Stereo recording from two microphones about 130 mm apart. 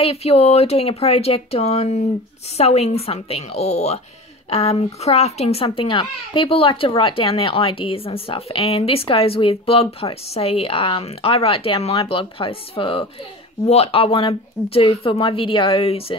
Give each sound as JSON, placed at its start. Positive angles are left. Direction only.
{"t": 0.0, "sound": "a child's voice", "side_deg": 50}